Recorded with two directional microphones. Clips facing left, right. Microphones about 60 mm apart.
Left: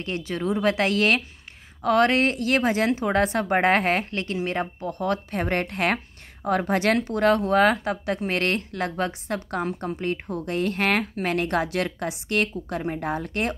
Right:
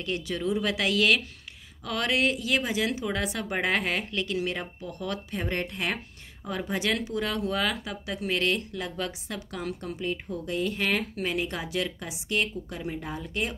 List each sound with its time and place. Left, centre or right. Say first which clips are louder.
0.0 s a woman's voice: left 2 dB; left